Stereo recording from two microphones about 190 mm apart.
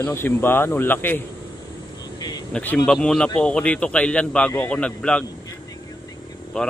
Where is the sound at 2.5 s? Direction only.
5° left (ahead or behind).